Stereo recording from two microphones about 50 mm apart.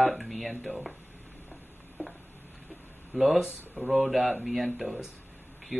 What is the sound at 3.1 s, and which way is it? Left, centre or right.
Speech, centre.